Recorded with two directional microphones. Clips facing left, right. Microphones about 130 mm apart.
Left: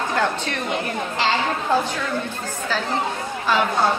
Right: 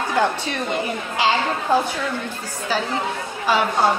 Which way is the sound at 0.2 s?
10° right (ahead or behind).